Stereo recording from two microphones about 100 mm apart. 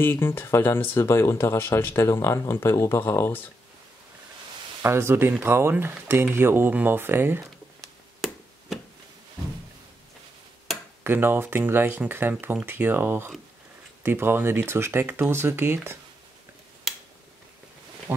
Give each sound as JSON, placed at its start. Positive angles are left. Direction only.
{"t": 0.0, "sound": "speech", "side_deg": 20}
{"t": 4.8, "sound": "speech", "side_deg": -25}
{"t": 7.8, "sound": "chop", "side_deg": 5}
{"t": 11.1, "sound": "speech", "side_deg": -20}